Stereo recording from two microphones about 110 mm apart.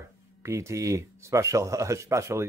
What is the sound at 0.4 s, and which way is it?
Speech, 25° right (ahead or behind).